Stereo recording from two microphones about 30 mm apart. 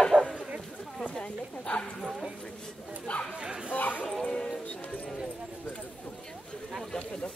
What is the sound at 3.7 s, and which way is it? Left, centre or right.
Speech, left.